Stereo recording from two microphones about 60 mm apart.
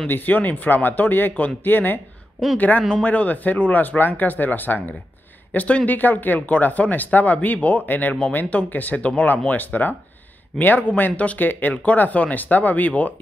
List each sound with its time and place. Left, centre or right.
0.1 s speech: left